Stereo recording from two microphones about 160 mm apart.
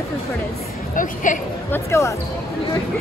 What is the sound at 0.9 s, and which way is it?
Speech, 55° left (ahead or behind).